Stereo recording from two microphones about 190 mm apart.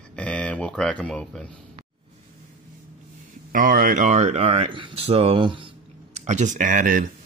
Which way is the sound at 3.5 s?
45° right (ahead or behind).